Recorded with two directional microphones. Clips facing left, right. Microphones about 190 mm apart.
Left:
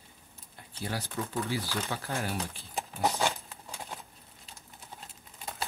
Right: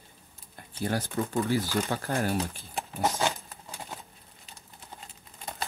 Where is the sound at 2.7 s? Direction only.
Centre (ahead or behind).